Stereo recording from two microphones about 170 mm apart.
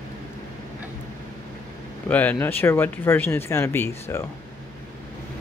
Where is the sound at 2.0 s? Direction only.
10° left (ahead or behind).